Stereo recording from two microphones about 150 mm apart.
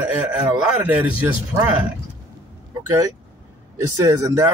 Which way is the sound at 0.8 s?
10° right (ahead or behind).